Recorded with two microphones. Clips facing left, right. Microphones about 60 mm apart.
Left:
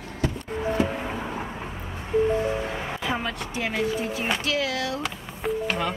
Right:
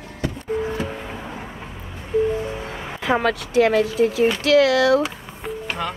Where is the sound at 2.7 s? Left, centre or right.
Centre.